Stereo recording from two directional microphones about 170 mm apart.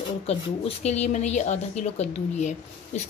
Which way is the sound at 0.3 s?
40° left (ahead or behind).